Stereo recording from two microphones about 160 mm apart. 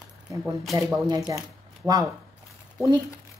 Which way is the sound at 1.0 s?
25° right (ahead or behind).